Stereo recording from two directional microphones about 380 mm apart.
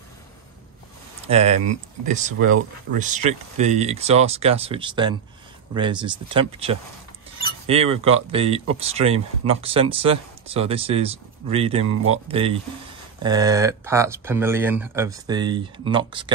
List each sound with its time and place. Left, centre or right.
1.2 s speech: centre